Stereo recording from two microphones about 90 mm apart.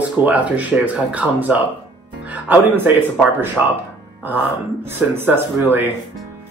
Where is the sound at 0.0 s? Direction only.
15° right (ahead or behind).